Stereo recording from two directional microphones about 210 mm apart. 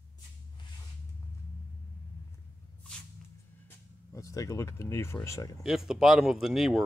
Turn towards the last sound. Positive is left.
turn(degrees=0)  # may be behind; listen again after turning